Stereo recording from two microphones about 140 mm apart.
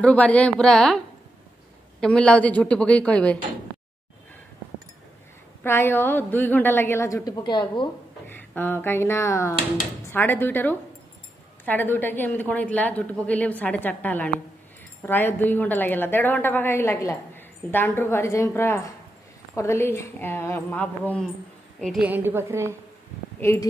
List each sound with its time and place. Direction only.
0.0 s a woman's voice: 10° left (ahead or behind)
5.6 s a woman's voice: 15° left (ahead or behind); by 7.9 s 35° left (ahead or behind)
8.3 s a woman's voice: 15° left (ahead or behind)
22.0 s a woman's voice: 15° right (ahead or behind)